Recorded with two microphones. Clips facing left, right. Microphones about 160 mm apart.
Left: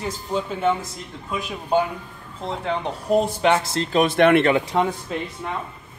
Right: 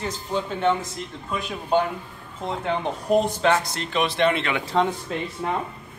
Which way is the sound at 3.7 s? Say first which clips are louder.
Left 5 dB; 35° left (ahead or behind).